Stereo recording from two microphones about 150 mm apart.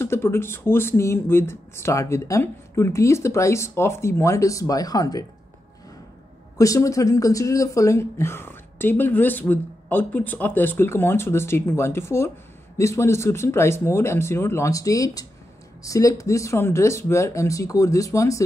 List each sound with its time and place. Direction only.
0.0 s speech: 15° left (ahead or behind)
6.6 s speech: 20° left (ahead or behind)